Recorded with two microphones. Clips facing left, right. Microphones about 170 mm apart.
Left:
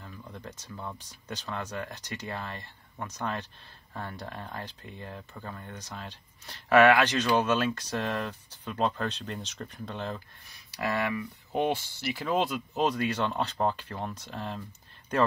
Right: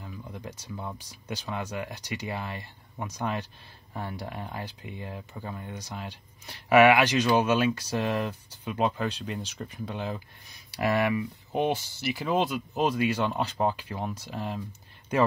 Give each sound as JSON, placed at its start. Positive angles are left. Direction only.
{"t": 0.0, "sound": "speech", "side_deg": -10}
{"t": 11.5, "sound": "speech", "side_deg": 0}